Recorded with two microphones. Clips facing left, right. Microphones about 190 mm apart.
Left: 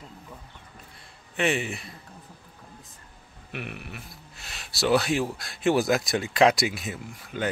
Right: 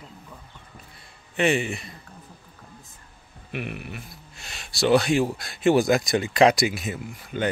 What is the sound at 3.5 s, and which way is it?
Speech, centre (ahead or behind).